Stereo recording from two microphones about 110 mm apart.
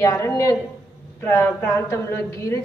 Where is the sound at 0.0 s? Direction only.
30° left (ahead or behind).